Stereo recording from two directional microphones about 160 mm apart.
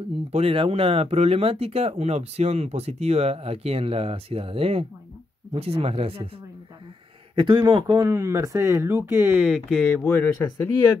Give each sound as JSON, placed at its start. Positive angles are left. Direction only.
{"t": 0.3, "sound": "speech", "side_deg": -35}
{"t": 7.3, "sound": "a man's voice", "side_deg": -30}
{"t": 7.8, "sound": "speech", "side_deg": -20}
{"t": 9.4, "sound": "speech", "side_deg": 0}